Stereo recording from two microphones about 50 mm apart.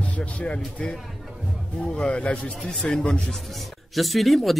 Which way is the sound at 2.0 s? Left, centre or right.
Left.